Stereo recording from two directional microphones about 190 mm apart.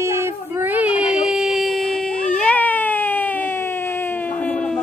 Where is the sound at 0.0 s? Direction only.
15° right (ahead or behind).